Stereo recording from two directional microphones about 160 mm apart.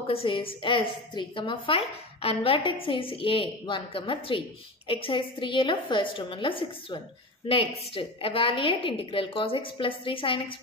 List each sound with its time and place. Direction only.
0.0 s a woman's voice: 35° left (ahead or behind)